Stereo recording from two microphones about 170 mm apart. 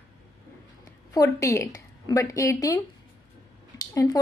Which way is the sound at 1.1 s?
20° left (ahead or behind).